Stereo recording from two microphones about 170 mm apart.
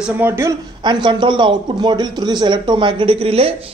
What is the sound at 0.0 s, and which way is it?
Speech, 15° right (ahead or behind).